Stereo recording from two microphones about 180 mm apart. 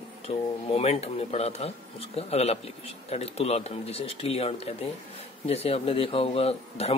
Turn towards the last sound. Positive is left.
turn(degrees=35)  # may be behind; listen again after turning